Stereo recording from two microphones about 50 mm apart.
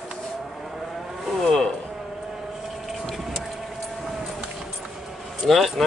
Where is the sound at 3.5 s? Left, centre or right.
Centre.